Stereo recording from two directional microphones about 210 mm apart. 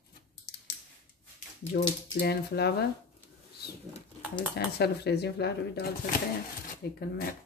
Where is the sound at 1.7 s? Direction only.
45° left (ahead or behind).